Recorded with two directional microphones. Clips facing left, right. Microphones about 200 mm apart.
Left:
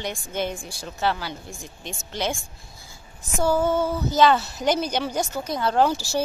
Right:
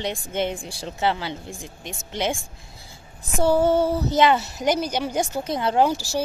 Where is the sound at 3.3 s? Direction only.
30° right (ahead or behind).